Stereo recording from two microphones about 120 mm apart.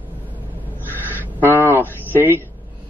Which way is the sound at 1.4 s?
20° right (ahead or behind).